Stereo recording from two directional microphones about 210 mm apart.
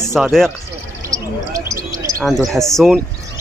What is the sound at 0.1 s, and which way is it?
Speech, centre (ahead or behind).